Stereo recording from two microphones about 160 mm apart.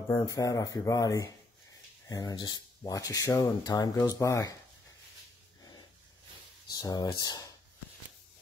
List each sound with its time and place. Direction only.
0.1 s speech: 20° left (ahead or behind)
5.6 s dog: 25° left (ahead or behind)
6.7 s speech: 25° left (ahead or behind)